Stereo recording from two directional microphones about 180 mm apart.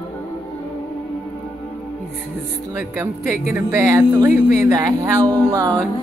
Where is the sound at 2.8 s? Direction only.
15° right (ahead or behind).